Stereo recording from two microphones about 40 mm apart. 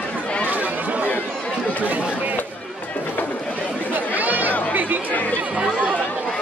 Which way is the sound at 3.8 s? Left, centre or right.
Right.